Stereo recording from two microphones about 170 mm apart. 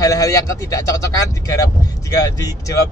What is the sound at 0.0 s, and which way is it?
Speech, 20° left (ahead or behind).